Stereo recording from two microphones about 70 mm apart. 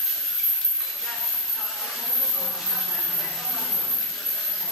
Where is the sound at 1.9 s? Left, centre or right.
Centre.